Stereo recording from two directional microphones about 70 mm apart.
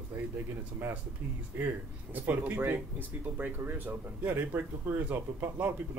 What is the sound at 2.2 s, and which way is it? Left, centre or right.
Speech, right.